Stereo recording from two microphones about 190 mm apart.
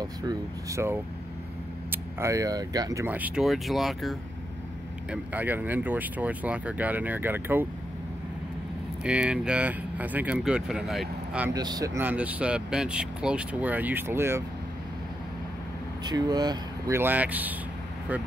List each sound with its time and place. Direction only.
0.0 s speech: 20° right (ahead or behind)
9.0 s speech: 5° right (ahead or behind)
11.5 s speech: 20° right (ahead or behind)
16.0 s speech: 20° right (ahead or behind)